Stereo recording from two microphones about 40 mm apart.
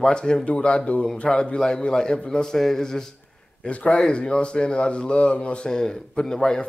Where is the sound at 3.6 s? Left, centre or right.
Left.